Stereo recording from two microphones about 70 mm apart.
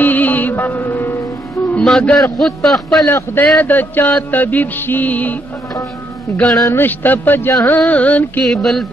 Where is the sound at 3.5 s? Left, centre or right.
Left.